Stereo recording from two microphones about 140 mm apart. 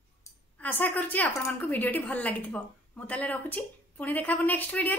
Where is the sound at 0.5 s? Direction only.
10° left (ahead or behind).